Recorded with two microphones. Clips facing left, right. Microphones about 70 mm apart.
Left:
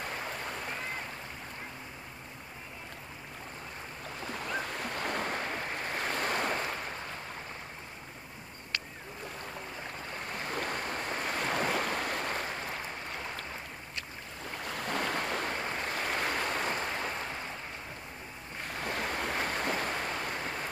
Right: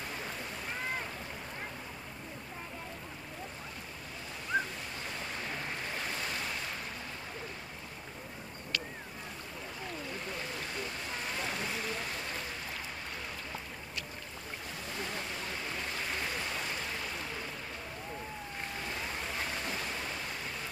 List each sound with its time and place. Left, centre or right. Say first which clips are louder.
4.3 s waves: right 2 dB; left
10.5 s waves: left 5 dB; left
14.7 s waves: left 8 dB; left
18.9 s waves: left 8 dB; left